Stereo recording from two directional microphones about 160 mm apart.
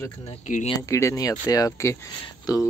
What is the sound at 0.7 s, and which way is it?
Speech, 20° left (ahead or behind).